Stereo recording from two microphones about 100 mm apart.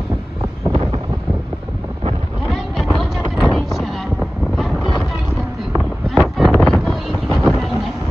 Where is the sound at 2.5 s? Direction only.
Centre (ahead or behind).